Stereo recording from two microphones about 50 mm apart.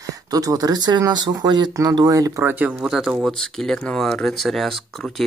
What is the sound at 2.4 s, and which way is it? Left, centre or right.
Speech, right.